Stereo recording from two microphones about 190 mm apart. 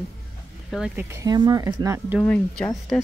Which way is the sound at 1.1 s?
20° right (ahead or behind).